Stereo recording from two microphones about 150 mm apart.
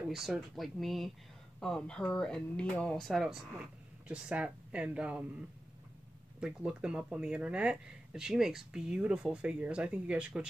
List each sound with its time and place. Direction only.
0.1 s speech: centre (ahead or behind)
6.4 s speech: 5° right (ahead or behind)